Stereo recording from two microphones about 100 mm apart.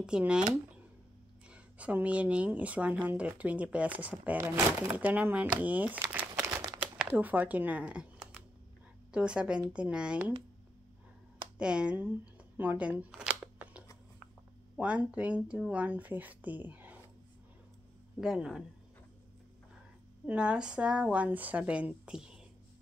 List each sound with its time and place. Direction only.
0.0 s speech: 10° right (ahead or behind); by 5.0 s 25° right (ahead or behind)
5.0 s speech: 15° right (ahead or behind)
6.4 s a sound: 35° right (ahead or behind)
7.0 s speech: 15° right (ahead or behind)
9.1 s speech: 10° right (ahead or behind)
11.5 s speech: 10° right (ahead or behind)
12.5 s a sound: 15° right (ahead or behind)
14.8 s speech: 10° right (ahead or behind)
18.2 s speech: 5° right (ahead or behind)
20.2 s speech: 10° right (ahead or behind)